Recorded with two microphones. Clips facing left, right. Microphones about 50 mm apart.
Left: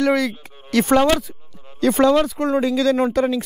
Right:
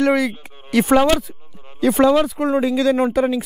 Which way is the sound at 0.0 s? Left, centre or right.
Centre.